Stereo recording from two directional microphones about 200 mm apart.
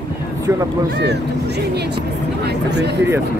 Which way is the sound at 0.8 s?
55° right (ahead or behind).